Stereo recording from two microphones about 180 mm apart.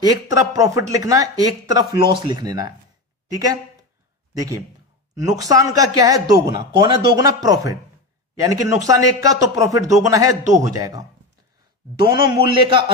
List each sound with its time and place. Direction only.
0.0 s a man's voice: 20° right (ahead or behind)
4.4 s a man's voice: 15° right (ahead or behind)